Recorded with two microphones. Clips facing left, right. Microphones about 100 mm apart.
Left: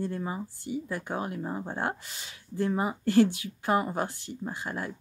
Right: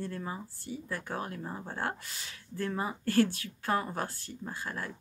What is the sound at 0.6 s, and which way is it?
Speech, 20° left (ahead or behind).